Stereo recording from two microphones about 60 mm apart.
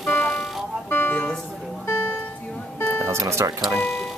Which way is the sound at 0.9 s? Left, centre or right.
Left.